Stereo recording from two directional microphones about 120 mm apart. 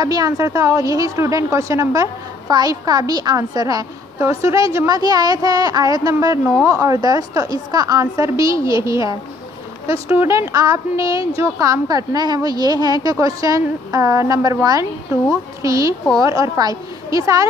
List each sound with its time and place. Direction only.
0.0 s a woman's voice: 30° right (ahead or behind)